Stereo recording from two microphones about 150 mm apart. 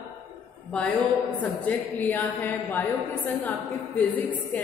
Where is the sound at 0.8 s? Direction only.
5° left (ahead or behind).